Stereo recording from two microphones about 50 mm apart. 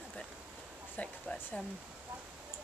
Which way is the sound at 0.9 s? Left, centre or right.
Left.